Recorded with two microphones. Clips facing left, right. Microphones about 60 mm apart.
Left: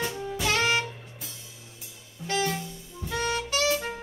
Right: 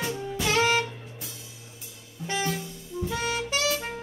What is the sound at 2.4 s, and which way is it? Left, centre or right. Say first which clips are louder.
Saxophone: left 1 dB; centre.